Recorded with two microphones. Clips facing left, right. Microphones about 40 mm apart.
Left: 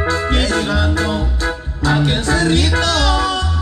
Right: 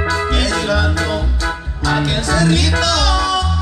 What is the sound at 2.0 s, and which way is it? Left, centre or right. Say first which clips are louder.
Music: even; left.